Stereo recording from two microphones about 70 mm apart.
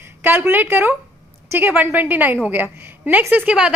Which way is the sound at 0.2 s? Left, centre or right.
Right.